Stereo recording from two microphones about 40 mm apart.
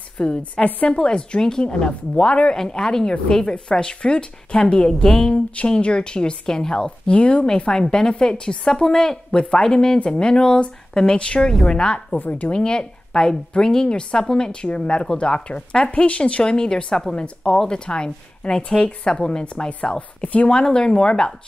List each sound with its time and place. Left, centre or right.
0.4 s a woman's voice: left
0.8 s a woman's voice: left
2.5 s a woman's voice: centre
4.9 s a woman's voice: centre
5.7 s a woman's voice: left
12.2 s a woman's voice: left
12.5 s a woman's voice: left
20.0 s a woman's voice: left
20.4 s a woman's voice: left